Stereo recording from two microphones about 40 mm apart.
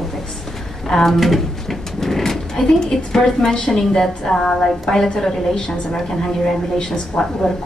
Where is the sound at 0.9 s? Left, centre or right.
Centre.